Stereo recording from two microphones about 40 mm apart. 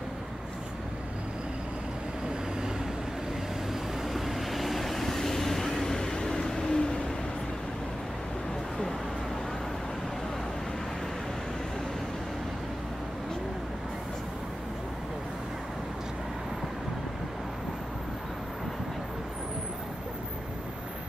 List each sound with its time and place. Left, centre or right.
4.1 s vehicle: centre